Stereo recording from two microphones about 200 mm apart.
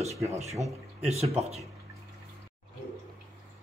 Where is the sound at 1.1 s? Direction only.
30° right (ahead or behind).